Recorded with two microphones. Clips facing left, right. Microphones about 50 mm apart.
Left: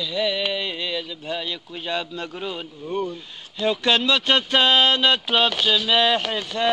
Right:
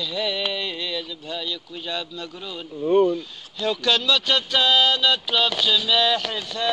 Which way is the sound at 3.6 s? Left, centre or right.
Left.